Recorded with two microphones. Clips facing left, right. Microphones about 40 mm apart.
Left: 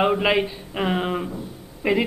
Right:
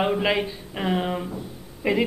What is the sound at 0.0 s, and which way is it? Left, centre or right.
Speech, centre.